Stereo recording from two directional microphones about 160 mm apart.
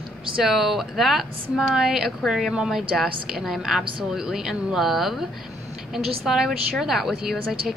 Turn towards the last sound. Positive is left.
turn(degrees=0)  # may be behind; listen again after turning